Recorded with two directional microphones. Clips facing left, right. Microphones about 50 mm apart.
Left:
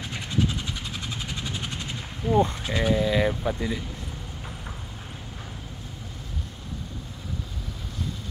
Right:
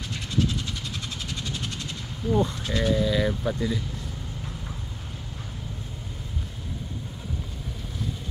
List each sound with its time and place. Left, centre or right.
0.1 s vehicle: centre
2.2 s speech: left
2.6 s speech: centre